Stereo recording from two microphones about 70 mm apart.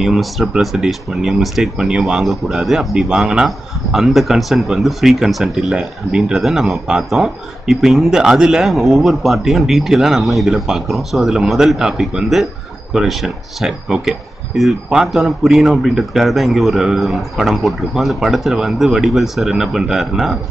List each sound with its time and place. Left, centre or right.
0.0 s speech: centre